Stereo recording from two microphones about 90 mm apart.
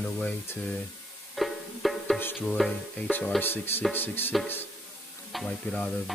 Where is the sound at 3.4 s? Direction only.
25° left (ahead or behind).